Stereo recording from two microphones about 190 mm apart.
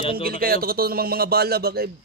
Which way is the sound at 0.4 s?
50° right (ahead or behind).